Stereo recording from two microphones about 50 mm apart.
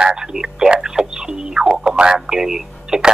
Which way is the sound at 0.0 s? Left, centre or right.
Centre.